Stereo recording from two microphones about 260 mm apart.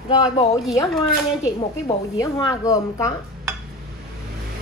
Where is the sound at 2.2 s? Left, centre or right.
Centre.